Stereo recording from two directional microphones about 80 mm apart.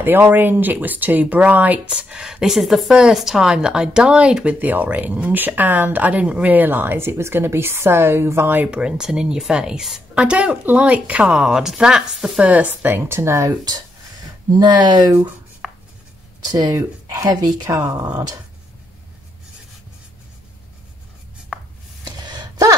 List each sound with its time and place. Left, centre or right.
0.0 s speech: right
8.6 s a woman's voice: centre
12.4 s speech: centre; by 13.6 s right
14.5 s speech: right
15.6 s chopping: centre
16.3 s speech: right
21.5 s chopping: centre
22.0 s gasp: right